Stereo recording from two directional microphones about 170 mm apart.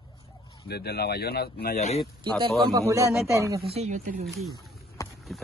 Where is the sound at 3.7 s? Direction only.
40° right (ahead or behind).